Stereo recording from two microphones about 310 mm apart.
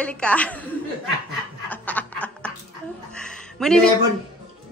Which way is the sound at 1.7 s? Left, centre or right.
Centre.